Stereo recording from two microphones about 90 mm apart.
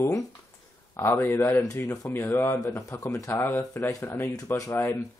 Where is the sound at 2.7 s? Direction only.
35° left (ahead or behind).